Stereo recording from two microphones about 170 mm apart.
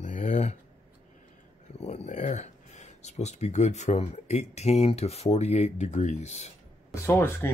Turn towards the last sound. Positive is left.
turn(degrees=15)  # may be behind; listen again after turning